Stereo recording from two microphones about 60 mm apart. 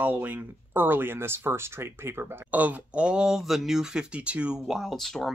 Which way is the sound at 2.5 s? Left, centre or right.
Right.